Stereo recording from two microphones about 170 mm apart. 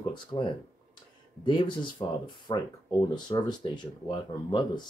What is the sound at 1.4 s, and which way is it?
Speech, 25° left (ahead or behind).